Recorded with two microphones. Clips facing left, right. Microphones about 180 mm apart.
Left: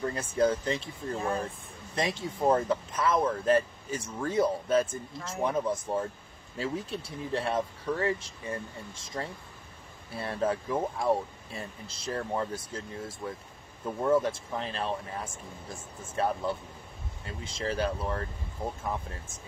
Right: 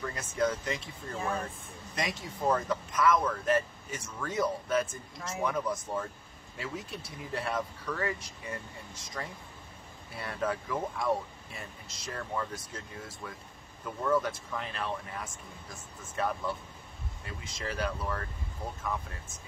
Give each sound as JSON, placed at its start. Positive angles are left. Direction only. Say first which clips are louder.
{"t": 0.0, "sound": "speech", "louder": "left 4 dB", "side_deg": 30}
{"t": 1.1, "sound": "speech", "louder": "left 3 dB", "side_deg": 0}
{"t": 2.0, "sound": "speech", "louder": "left 5 dB", "side_deg": 30}